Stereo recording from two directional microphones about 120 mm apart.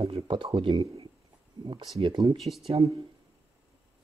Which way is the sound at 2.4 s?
Centre (ahead or behind).